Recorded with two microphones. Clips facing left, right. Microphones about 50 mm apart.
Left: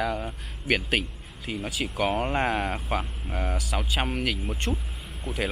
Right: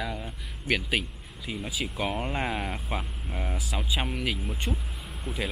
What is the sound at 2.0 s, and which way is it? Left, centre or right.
Speech, centre.